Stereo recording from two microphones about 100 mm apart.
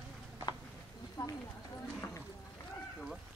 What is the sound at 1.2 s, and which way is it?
Speech, 35° left (ahead or behind).